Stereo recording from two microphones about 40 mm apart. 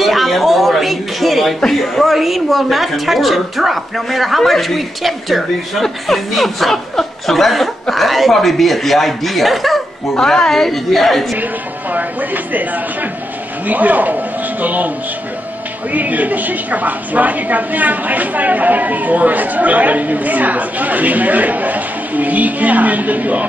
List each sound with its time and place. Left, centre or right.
0.0 s music: centre
1.6 s a woman's voice: centre
11.9 s a woman's voice: right
15.9 s a woman's voice: right